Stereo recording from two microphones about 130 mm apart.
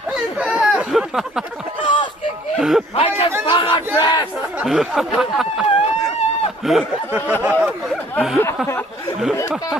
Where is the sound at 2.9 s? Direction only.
50° left (ahead or behind).